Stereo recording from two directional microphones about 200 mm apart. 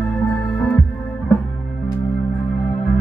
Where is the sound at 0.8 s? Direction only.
Centre (ahead or behind).